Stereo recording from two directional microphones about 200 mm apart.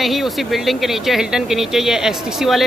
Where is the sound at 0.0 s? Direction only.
Centre (ahead or behind).